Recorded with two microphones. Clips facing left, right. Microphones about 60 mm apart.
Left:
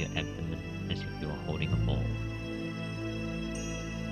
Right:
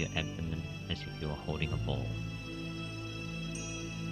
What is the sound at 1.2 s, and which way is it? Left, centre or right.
Speech, left.